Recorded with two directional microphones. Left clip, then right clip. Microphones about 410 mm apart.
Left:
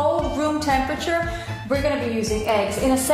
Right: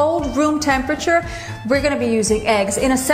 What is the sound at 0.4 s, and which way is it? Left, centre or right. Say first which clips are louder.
Music: right 4 dB; right.